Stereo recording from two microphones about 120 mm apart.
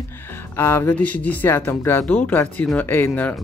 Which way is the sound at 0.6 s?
15° left (ahead or behind).